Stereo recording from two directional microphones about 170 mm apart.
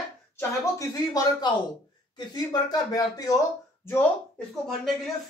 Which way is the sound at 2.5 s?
20° left (ahead or behind).